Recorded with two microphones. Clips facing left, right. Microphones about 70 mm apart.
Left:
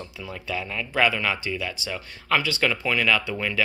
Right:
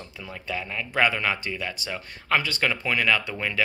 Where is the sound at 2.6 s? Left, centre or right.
Centre.